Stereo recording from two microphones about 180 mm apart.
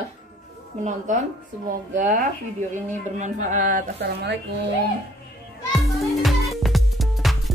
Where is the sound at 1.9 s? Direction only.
45° right (ahead or behind).